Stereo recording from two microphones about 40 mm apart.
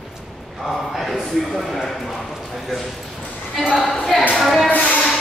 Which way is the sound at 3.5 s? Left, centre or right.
Centre.